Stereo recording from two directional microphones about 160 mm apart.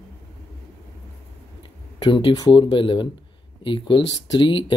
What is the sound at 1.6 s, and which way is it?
Speech, 30° left (ahead or behind).